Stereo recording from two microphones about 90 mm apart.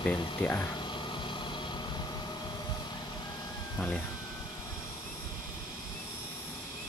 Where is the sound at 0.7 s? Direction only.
65° left (ahead or behind).